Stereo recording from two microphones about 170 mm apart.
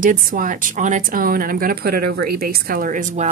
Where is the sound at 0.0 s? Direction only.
55° right (ahead or behind).